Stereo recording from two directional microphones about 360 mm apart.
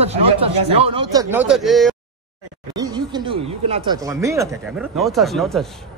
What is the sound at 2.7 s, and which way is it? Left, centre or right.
Speech, centre.